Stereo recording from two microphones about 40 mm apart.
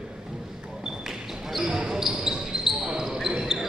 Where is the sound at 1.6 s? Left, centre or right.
Centre.